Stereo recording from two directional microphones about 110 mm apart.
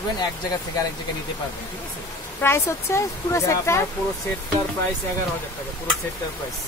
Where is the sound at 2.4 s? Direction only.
25° left (ahead or behind).